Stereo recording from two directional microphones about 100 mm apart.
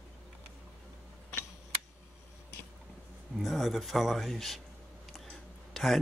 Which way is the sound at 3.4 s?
Centre (ahead or behind).